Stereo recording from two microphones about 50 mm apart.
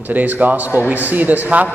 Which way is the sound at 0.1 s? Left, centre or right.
Right.